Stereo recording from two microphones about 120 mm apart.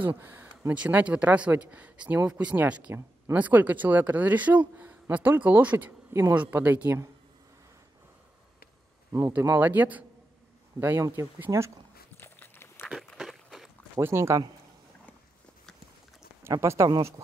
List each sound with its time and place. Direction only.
0.2 s speech: 15° right (ahead or behind)
9.4 s speech: 15° right (ahead or behind)
12.2 s walk: 20° left (ahead or behind)
12.8 s walk: centre (ahead or behind)
13.9 s speech: 20° right (ahead or behind)
16.4 s speech: 25° right (ahead or behind)